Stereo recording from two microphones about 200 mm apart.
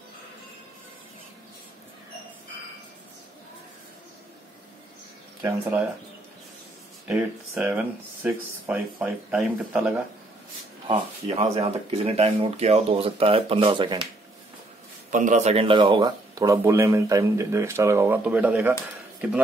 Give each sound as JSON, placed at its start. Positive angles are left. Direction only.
{"t": 5.4, "sound": "speech", "side_deg": -10}
{"t": 7.1, "sound": "speech", "side_deg": -5}
{"t": 10.9, "sound": "speech", "side_deg": -30}
{"t": 15.0, "sound": "speech", "side_deg": -40}